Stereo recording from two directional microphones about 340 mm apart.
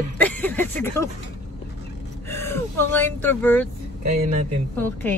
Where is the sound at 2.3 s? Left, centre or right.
Centre.